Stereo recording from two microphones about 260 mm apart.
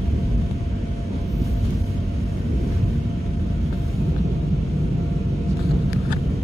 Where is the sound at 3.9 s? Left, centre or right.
Centre.